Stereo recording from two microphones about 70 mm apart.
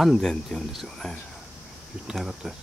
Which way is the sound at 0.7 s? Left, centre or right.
Centre.